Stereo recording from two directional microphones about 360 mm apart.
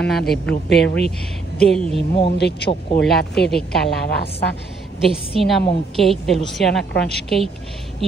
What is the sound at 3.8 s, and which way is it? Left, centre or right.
Speech, left.